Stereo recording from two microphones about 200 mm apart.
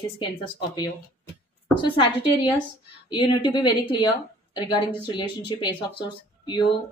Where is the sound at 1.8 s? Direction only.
25° left (ahead or behind).